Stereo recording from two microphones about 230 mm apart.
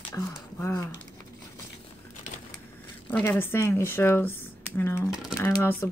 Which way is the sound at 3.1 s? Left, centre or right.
Centre.